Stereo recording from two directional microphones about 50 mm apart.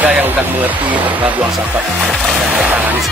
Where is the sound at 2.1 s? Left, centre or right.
Centre.